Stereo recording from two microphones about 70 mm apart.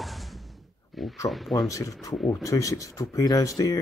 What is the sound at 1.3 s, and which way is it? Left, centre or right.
Speech, centre.